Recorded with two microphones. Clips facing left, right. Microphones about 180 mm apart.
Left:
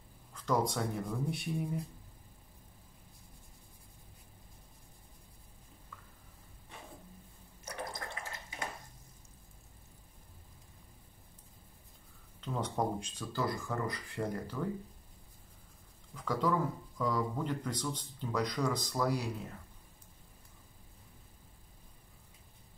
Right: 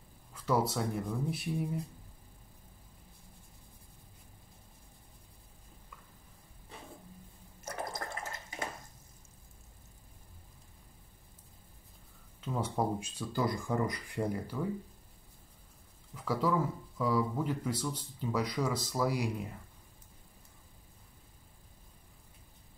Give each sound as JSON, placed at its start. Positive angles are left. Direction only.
{"t": 0.3, "sound": "speech", "side_deg": -5}
{"t": 7.6, "sound": "water", "side_deg": -45}
{"t": 12.4, "sound": "speech", "side_deg": -5}
{"t": 16.2, "sound": "speech", "side_deg": -5}